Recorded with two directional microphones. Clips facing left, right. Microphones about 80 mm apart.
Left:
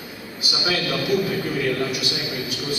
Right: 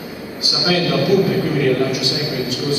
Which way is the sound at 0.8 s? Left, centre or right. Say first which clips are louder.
Right 8 dB; right.